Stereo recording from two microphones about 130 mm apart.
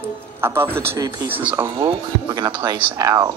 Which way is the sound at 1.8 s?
35° right (ahead or behind).